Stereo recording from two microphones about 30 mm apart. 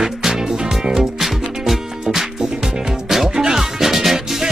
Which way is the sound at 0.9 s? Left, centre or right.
Centre.